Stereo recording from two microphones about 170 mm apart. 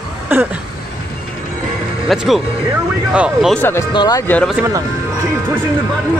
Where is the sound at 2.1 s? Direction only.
Centre (ahead or behind).